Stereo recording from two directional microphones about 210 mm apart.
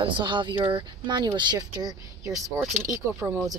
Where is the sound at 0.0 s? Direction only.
20° right (ahead or behind).